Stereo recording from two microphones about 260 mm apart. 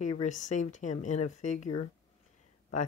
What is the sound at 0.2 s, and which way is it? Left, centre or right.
Speech, left.